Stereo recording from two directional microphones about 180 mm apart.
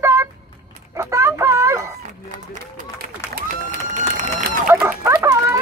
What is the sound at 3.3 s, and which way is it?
Run, 45° right (ahead or behind).